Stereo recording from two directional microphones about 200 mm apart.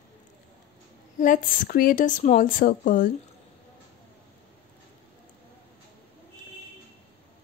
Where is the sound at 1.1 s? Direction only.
40° left (ahead or behind).